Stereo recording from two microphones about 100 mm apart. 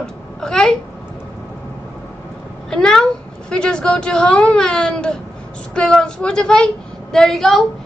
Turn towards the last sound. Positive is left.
turn(degrees=5)  # may be behind; listen again after turning